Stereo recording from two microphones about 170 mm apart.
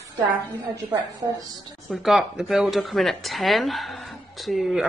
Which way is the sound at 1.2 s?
20° right (ahead or behind).